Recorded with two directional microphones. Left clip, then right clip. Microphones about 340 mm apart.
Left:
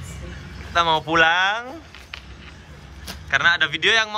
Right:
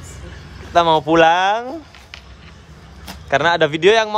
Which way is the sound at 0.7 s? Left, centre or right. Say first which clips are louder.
Right 5 dB; centre.